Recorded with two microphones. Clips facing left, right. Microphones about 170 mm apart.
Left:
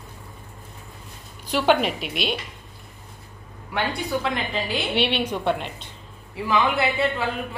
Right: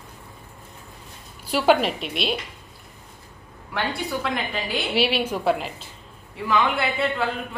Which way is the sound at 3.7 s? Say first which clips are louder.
Left 1 dB; centre (ahead or behind).